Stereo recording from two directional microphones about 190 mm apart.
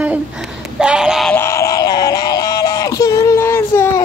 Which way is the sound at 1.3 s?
15° left (ahead or behind).